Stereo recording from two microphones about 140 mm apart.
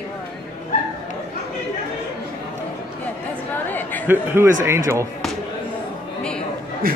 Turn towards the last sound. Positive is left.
turn(degrees=-90)